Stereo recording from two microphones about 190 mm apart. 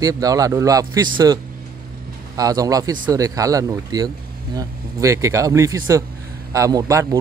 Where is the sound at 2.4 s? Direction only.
20° right (ahead or behind).